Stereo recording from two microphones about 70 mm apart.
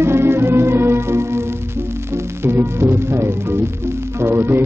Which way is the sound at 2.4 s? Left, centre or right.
Right.